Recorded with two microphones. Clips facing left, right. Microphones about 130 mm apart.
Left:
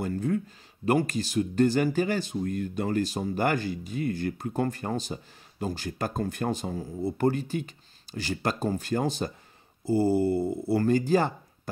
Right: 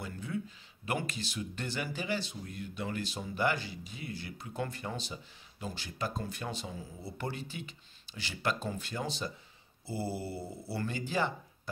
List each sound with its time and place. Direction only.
0.0 s speech: 45° left (ahead or behind)